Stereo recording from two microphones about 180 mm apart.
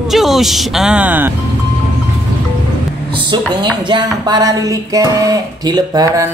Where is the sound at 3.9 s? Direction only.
25° right (ahead or behind).